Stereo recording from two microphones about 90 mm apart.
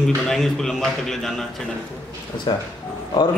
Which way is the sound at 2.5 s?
60° left (ahead or behind).